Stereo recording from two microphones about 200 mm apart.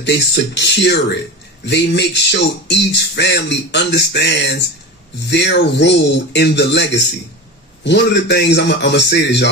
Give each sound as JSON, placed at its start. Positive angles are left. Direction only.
{"t": 0.0, "sound": "speech", "side_deg": 60}